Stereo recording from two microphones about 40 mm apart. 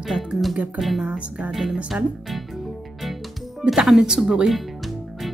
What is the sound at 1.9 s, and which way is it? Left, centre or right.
Speech, right.